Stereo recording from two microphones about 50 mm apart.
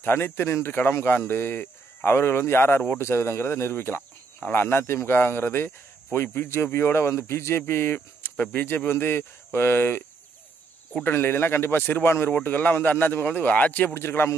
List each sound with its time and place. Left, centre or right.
0.0 s speech: left
0.7 s a man's voice: left
11.1 s speech: left
12.3 s a man's voice: left
13.9 s speech: left